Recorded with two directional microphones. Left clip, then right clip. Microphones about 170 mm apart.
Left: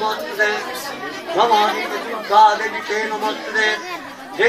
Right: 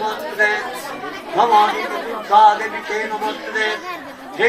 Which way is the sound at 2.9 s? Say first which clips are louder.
Even; 35° right (ahead or behind).